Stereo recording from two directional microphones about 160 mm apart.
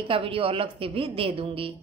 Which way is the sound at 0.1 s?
35° right (ahead or behind).